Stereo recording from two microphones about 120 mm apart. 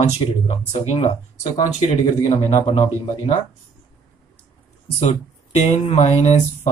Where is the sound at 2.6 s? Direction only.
50° left (ahead or behind).